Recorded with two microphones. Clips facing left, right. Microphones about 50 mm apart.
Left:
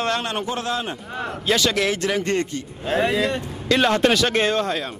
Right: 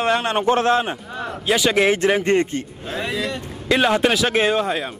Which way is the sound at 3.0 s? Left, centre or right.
Left.